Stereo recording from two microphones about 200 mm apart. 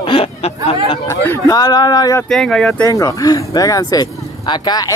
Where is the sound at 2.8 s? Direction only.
15° left (ahead or behind).